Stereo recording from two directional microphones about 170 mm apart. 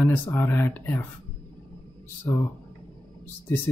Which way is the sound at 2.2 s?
15° left (ahead or behind).